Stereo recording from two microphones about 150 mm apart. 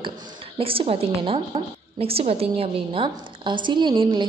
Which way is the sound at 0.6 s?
40° right (ahead or behind).